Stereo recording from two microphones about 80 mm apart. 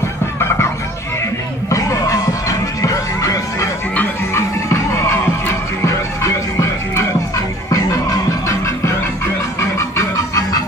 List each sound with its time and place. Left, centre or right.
1.7 s music: left
6.2 s music: left